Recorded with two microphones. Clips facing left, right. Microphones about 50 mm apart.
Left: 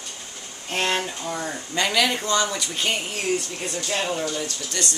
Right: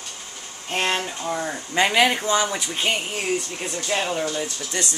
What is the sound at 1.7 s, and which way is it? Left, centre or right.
Speech, right.